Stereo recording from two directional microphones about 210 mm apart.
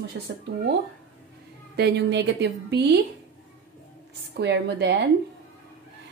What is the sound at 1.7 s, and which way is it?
A woman's voice, 55° right (ahead or behind).